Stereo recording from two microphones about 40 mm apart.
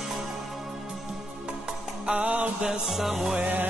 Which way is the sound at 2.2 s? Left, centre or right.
Right.